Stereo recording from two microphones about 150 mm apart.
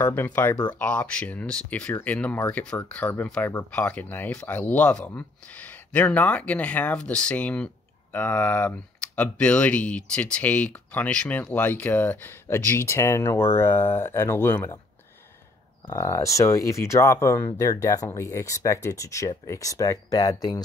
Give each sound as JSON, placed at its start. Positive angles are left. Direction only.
{"t": 0.0, "sound": "speech", "side_deg": 15}
{"t": 15.9, "sound": "speech", "side_deg": 20}